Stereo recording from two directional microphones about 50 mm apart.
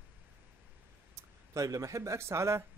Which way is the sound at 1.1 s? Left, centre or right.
Right.